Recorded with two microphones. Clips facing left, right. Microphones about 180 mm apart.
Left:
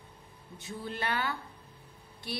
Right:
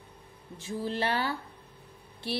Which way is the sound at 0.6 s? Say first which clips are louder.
Right 6 dB; 30° right (ahead or behind).